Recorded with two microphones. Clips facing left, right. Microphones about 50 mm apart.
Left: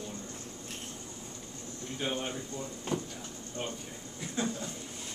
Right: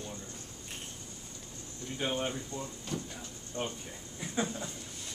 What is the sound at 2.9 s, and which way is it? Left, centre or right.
Speech, left.